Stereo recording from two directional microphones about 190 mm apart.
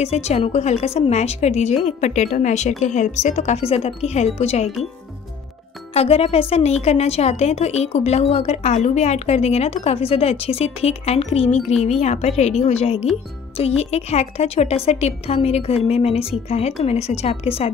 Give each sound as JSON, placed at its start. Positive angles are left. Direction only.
{"t": 0.0, "sound": "a woman's voice", "side_deg": 35}
{"t": 5.9, "sound": "a woman's voice", "side_deg": 30}